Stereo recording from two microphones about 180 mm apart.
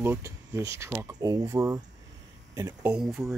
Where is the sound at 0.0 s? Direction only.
15° right (ahead or behind).